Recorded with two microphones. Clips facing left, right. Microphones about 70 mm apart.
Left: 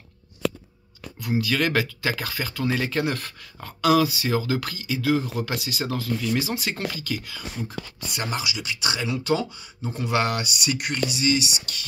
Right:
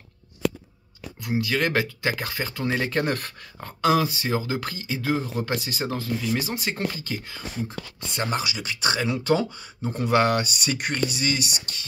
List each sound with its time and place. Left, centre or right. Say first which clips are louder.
1.2 s speech: left 1 dB; right
2.9 s speech: right 1 dB; right
3.6 s speech: left 2 dB; right
5.9 s speech: left 1 dB; right
11.1 s speech: left 3 dB; right